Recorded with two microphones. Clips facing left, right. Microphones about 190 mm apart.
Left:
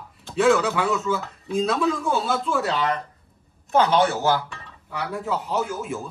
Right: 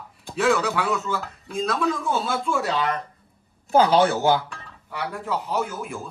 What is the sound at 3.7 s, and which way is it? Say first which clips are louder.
Speech: right 2 dB; 30° right (ahead or behind).